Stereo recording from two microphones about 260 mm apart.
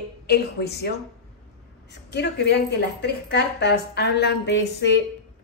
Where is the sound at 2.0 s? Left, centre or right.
Left.